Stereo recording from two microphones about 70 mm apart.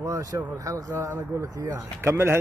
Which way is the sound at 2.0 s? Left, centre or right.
Right.